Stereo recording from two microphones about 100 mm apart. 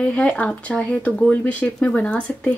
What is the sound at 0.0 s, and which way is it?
Speech, 15° left (ahead or behind).